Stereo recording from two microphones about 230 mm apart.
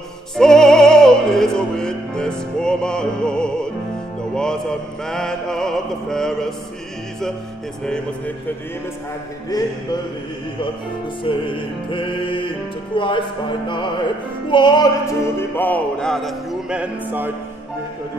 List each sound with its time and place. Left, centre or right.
0.4 s music: centre
11.2 s music: left; by 17.3 s centre